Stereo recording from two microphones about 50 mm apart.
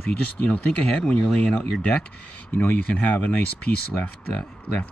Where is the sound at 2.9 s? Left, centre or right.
Left.